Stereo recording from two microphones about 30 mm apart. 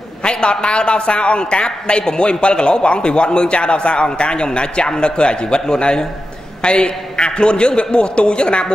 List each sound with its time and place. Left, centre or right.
0.2 s a man's voice: left